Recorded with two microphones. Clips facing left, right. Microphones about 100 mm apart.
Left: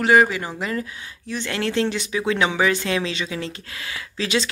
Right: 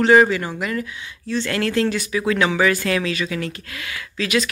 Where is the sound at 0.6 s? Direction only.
25° left (ahead or behind).